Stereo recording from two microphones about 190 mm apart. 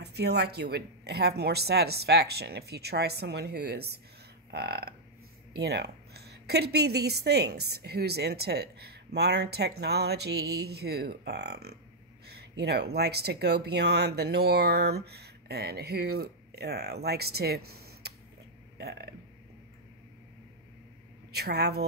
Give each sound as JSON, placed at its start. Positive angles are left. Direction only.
{"t": 0.0, "sound": "a woman's voice", "side_deg": -60}
{"t": 4.5, "sound": "a sound", "side_deg": -55}
{"t": 5.6, "sound": "a woman's voice", "side_deg": -60}
{"t": 21.3, "sound": "a woman's voice", "side_deg": -55}